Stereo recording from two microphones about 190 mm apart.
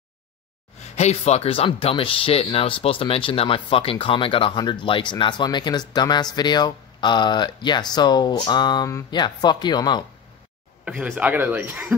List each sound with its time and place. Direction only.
0.7 s speech: 35° left (ahead or behind)
10.9 s speech: 5° right (ahead or behind)